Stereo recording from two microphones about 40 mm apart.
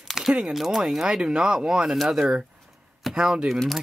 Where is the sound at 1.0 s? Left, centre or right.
Right.